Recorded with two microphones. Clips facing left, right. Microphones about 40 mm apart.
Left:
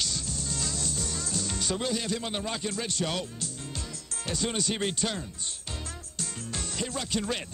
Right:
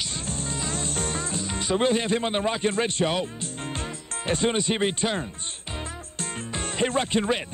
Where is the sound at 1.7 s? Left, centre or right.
Right.